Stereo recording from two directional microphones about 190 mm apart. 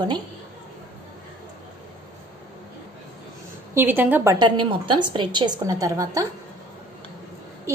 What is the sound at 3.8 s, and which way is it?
Speech, 10° right (ahead or behind).